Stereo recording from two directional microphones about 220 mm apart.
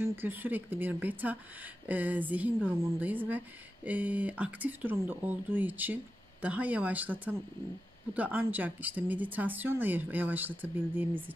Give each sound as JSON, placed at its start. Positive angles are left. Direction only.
{"t": 0.0, "sound": "speech", "side_deg": -10}